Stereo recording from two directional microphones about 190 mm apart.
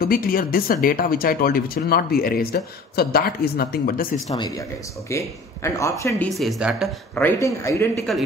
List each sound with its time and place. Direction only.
0.0 s speech: 50° left (ahead or behind)
4.3 s speech: 20° left (ahead or behind)
6.3 s a woman's voice: centre (ahead or behind)
7.2 s speech: 15° left (ahead or behind)